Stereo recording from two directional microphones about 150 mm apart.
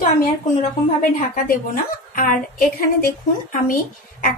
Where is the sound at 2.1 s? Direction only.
70° left (ahead or behind).